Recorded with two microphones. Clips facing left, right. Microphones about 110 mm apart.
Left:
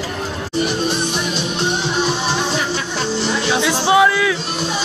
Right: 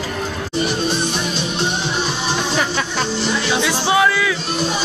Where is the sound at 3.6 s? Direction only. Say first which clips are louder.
Left 4 dB; 15° left (ahead or behind).